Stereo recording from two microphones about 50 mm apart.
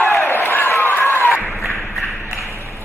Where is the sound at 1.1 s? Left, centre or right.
Left.